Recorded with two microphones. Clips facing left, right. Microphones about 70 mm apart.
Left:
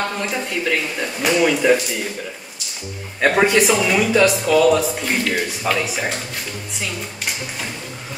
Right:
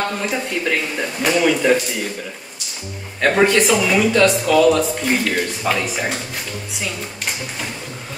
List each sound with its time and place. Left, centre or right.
0.2 s speech: centre
3.2 s speech: centre
6.8 s a sound: centre